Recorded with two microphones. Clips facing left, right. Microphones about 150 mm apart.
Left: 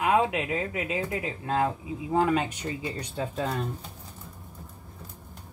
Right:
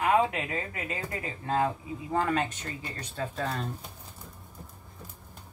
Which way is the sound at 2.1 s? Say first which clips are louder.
Left 3 dB; 10° left (ahead or behind).